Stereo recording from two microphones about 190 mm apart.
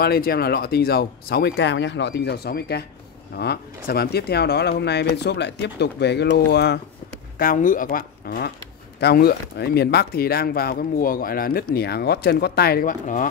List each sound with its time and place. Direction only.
0.0 s speech: 55° left (ahead or behind)
7.3 s speech: 45° left (ahead or behind)